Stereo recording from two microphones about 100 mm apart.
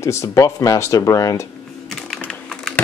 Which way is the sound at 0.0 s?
30° left (ahead or behind).